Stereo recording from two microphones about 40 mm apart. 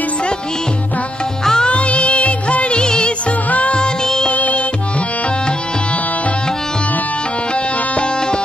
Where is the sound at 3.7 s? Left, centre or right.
Centre.